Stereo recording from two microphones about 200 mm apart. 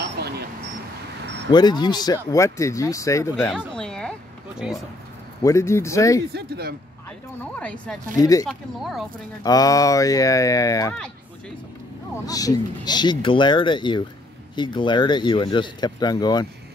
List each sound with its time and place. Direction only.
0.0 s a sound: 55° right (ahead or behind)
1.5 s speech: 20° left (ahead or behind); by 4.8 s 5° right (ahead or behind)
5.4 s speech: 15° left (ahead or behind)
6.3 s speech: 55° right (ahead or behind)
7.5 s speech: 5° left (ahead or behind)
8.2 s speech: 15° left (ahead or behind)
8.5 s speech: centre (ahead or behind)
9.4 s speech: 20° left (ahead or behind)
12.3 s speech: 20° left (ahead or behind)